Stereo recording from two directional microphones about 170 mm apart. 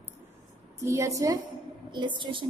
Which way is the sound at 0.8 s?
15° right (ahead or behind).